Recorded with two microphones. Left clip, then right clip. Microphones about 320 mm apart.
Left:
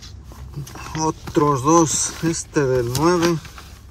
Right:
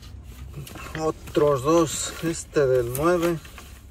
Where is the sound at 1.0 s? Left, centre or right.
Centre.